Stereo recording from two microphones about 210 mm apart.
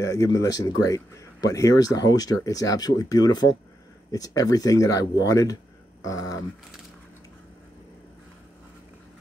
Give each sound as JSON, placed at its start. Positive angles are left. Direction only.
{"t": 0.0, "sound": "speech", "side_deg": 15}